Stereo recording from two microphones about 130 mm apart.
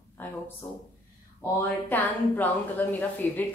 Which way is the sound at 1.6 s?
15° left (ahead or behind).